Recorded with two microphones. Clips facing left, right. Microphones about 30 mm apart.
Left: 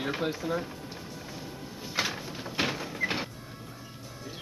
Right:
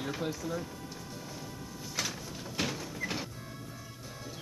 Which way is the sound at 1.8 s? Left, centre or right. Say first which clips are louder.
Left 6 dB; left.